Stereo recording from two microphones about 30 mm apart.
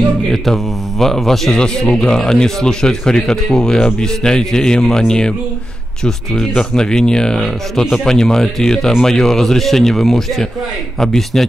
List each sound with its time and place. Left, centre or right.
0.3 s speech: centre
1.9 s speech: left
6.7 s speech: left; by 11.4 s centre